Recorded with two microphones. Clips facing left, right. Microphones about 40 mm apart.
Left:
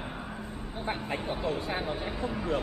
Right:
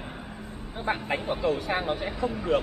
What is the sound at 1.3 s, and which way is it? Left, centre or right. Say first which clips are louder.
Speech: right 6 dB; right.